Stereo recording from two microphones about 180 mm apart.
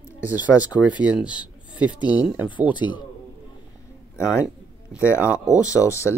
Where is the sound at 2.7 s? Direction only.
25° left (ahead or behind).